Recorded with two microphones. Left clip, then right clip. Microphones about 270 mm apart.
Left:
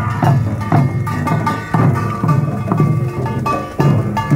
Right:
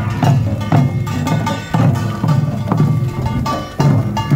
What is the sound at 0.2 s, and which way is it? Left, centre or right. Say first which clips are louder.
Music: right 2 dB; centre.